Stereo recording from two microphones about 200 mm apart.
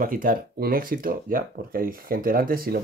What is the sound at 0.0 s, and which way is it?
Speech, 45° right (ahead or behind).